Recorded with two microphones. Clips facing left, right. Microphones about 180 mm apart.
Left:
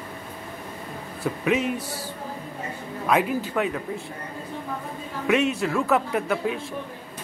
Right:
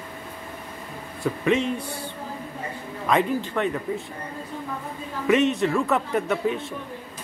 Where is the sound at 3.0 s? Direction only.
5° left (ahead or behind).